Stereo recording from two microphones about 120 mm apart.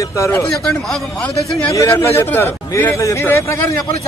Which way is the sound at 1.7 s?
25° left (ahead or behind).